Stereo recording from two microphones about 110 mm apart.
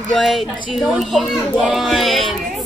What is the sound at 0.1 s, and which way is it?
A child's voice, centre (ahead or behind).